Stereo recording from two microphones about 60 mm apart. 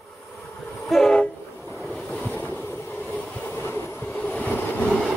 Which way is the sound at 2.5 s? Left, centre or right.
Left.